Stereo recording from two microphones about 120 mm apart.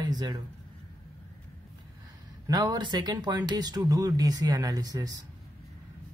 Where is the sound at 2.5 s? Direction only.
35° right (ahead or behind).